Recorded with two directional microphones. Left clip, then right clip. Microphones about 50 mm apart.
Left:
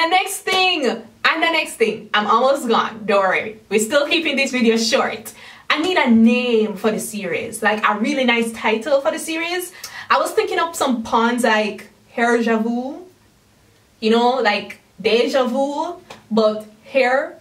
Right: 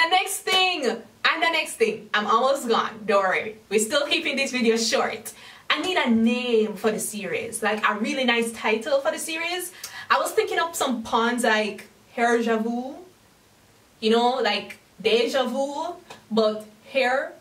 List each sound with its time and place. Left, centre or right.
0.0 s a sound: centre
0.9 s a woman's voice: centre
1.8 s a woman's voice: centre
9.9 s a sound: centre
10.5 s speech: centre
10.9 s a woman's voice: centre
12.6 s speech: centre
14.0 s a woman's voice: centre